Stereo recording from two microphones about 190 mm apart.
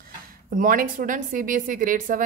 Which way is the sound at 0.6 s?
45° right (ahead or behind).